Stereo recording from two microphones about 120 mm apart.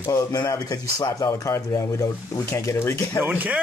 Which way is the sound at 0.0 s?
30° left (ahead or behind).